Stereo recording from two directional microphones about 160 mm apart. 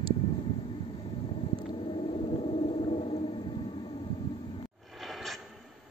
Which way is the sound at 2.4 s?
40° left (ahead or behind).